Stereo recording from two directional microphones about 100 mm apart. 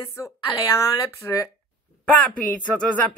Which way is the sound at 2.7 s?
15° left (ahead or behind).